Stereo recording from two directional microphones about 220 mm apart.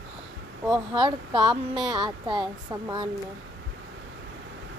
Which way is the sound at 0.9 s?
20° right (ahead or behind).